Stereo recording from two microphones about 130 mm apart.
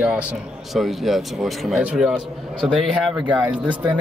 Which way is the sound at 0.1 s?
10° right (ahead or behind).